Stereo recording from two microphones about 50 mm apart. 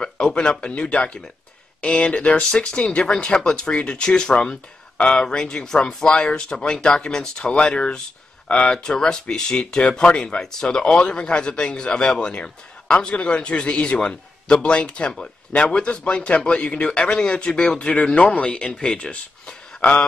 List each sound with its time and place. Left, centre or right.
0.0 s a man's voice: centre
4.9 s speech: left
5.2 s a man's voice: centre
8.7 s speech: centre
10.4 s a man's voice: centre